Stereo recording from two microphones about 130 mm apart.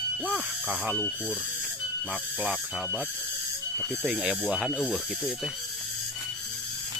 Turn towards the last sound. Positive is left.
turn(degrees=-5)  # may be behind; listen again after turning